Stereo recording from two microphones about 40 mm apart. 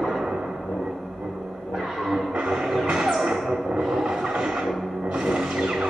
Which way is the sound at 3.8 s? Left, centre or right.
Centre.